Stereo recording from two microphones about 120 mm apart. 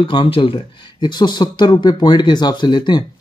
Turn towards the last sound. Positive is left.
turn(degrees=40)  # may be behind; listen again after turning